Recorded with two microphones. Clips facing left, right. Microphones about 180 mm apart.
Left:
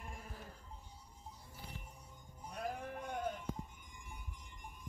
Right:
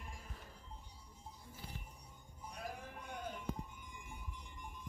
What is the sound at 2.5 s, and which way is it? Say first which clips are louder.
Sheep: left 6 dB; 50° left (ahead or behind).